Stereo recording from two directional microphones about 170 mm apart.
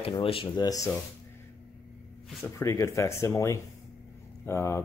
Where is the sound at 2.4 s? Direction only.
15° left (ahead or behind).